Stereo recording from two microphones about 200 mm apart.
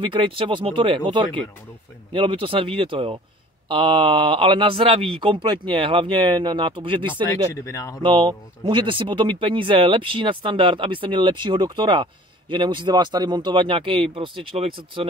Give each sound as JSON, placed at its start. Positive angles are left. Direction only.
{"t": 0.0, "sound": "speech", "side_deg": -25}
{"t": 7.6, "sound": "speech", "side_deg": 15}
{"t": 8.0, "sound": "speech", "side_deg": -25}